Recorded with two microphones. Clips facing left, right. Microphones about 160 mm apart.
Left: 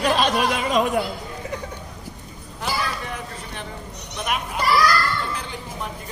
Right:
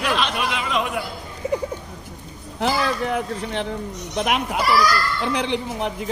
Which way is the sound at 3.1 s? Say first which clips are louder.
Right 9 dB; 70° right (ahead or behind).